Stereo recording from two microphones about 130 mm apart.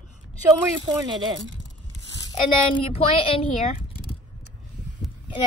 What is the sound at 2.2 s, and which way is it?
Speech, 30° left (ahead or behind).